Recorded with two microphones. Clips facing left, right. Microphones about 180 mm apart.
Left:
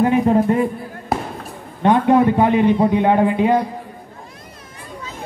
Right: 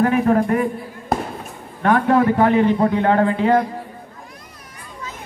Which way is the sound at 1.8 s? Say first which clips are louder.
Left 2 dB; 20° left (ahead or behind).